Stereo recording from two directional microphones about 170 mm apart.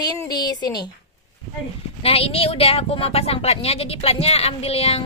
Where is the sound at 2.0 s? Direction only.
35° left (ahead or behind).